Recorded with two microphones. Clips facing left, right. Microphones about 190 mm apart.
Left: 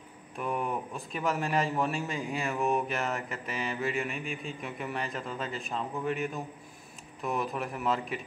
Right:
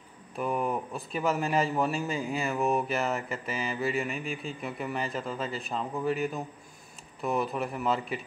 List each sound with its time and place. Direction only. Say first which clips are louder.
0.4 s a man's voice: right 3 dB; centre (ahead or behind)